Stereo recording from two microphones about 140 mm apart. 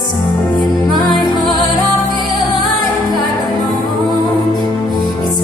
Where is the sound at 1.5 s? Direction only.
30° left (ahead or behind).